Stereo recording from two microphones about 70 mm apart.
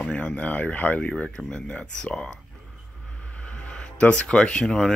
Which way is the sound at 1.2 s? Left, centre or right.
Centre.